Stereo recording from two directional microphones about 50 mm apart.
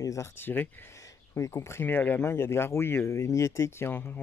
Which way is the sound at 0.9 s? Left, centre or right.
Left.